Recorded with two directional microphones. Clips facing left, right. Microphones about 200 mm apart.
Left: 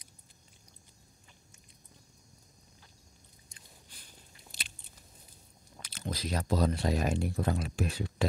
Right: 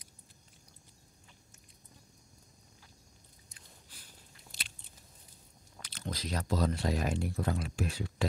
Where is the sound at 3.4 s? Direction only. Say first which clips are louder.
Left 1 dB; 5° right (ahead or behind).